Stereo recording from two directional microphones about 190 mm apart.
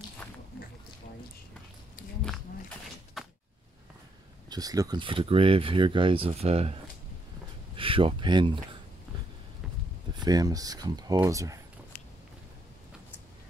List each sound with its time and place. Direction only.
0.2 s a sound: 5° left (ahead or behind)
3.2 s cupboard open or close: centre (ahead or behind)
4.5 s speech: 20° right (ahead or behind)
7.7 s speech: 30° right (ahead or behind)
10.2 s speech: 20° right (ahead or behind)